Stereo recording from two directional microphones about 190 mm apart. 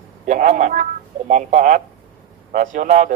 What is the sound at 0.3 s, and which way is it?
A man's voice, 40° right (ahead or behind).